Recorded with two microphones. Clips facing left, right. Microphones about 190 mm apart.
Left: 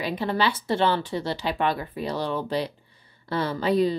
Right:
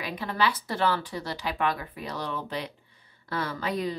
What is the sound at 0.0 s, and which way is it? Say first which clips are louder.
Speech: left 4 dB; 30° left (ahead or behind).